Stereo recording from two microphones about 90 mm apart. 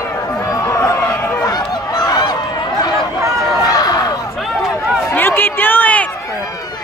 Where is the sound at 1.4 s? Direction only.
50° left (ahead or behind).